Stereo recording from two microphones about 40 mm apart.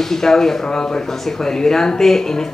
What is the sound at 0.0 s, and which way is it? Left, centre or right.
Speech, centre.